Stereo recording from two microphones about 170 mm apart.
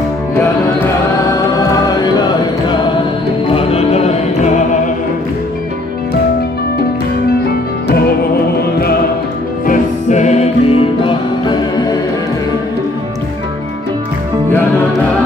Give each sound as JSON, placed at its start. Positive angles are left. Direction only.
{"t": 3.5, "sound": "music", "side_deg": 35}
{"t": 9.7, "sound": "music", "side_deg": 45}